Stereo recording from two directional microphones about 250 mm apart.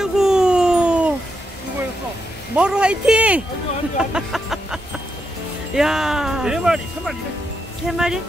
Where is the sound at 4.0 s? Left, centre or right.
Centre.